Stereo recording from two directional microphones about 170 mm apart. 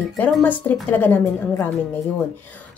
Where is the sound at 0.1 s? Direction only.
10° left (ahead or behind).